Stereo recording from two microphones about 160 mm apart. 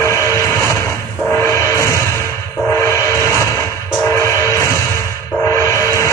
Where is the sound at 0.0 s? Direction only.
15° left (ahead or behind).